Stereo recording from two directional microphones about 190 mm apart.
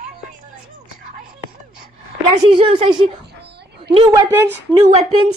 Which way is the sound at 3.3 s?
60° right (ahead or behind).